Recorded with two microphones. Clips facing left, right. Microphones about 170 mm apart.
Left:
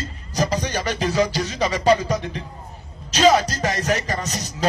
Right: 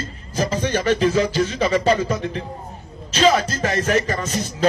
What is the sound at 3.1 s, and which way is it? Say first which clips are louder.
A man's voice: left 1 dB; 40° left (ahead or behind).